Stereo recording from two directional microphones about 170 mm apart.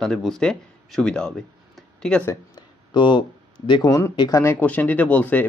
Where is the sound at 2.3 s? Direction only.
25° left (ahead or behind).